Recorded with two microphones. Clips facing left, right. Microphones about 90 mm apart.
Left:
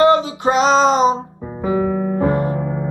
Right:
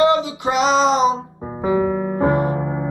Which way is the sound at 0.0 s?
35° left (ahead or behind).